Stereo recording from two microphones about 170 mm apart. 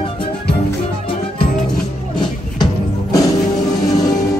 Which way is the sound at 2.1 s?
20° left (ahead or behind).